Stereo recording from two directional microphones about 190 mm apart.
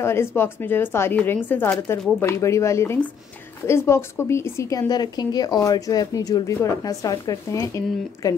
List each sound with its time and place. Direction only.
0.0 s a woman's voice: 15° left (ahead or behind)